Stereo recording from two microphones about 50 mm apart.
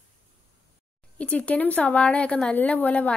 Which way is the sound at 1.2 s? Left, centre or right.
Left.